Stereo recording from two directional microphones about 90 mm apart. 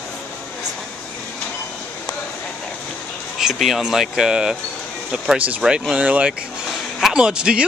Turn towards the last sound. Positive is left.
turn(degrees=-10)  # may be behind; listen again after turning